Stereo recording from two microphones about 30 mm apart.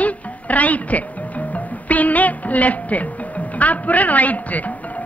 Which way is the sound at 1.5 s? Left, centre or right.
Left.